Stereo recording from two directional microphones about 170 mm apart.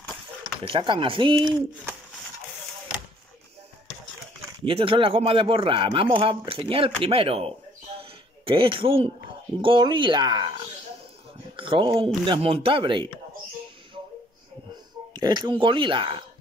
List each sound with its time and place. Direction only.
0.7 s speech: 30° right (ahead or behind)
4.6 s a man's voice: 30° right (ahead or behind)
8.0 s a sound: 30° right (ahead or behind)
9.6 s a man's voice: 30° right (ahead or behind)
15.1 s speech: 25° right (ahead or behind)